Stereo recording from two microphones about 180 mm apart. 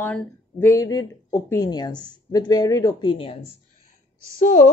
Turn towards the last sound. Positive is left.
turn(degrees=45)  # may be behind; listen again after turning